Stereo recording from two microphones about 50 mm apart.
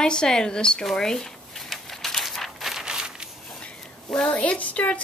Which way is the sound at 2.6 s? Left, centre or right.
Centre.